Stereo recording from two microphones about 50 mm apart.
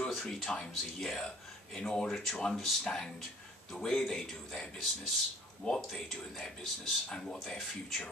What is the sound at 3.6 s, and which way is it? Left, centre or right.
Speech, centre.